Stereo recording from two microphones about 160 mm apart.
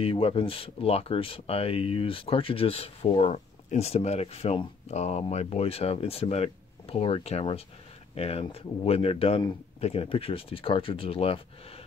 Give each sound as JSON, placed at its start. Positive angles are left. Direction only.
{"t": 0.0, "sound": "speech", "side_deg": 35}